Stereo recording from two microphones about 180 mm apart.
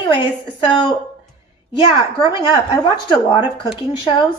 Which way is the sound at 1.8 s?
25° left (ahead or behind).